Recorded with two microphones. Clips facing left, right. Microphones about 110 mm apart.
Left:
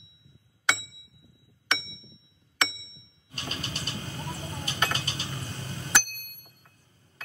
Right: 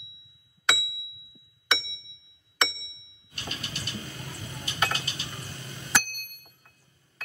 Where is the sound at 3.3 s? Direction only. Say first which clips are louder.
Left 2 dB; 35° left (ahead or behind).